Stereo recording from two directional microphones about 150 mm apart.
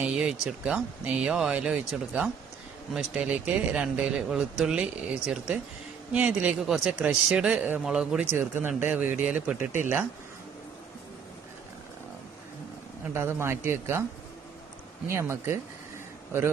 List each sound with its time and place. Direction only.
0.0 s speech: 5° right (ahead or behind)
9.6 s speech: 55° left (ahead or behind)
13.1 s speech: 15° right (ahead or behind)
15.0 s speech: 15° right (ahead or behind)